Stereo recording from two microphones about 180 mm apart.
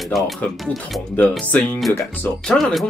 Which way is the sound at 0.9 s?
5° left (ahead or behind).